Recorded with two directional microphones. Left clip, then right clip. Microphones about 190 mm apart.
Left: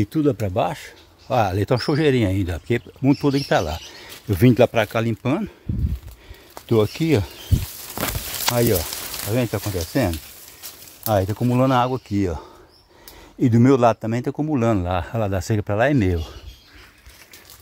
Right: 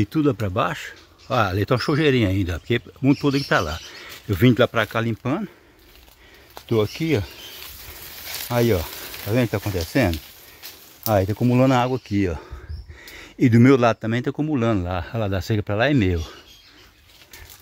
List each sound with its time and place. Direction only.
0.0 s speech: centre (ahead or behind); by 5.5 s 15° left (ahead or behind)
6.5 s speech: 25° left (ahead or behind)
8.5 s speech: 5° right (ahead or behind)
11.1 s speech: 5° right (ahead or behind)
12.1 s speech: centre (ahead or behind)